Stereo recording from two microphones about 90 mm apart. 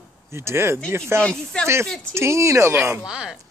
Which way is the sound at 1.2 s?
10° left (ahead or behind).